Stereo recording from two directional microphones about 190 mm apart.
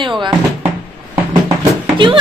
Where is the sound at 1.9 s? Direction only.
25° right (ahead or behind).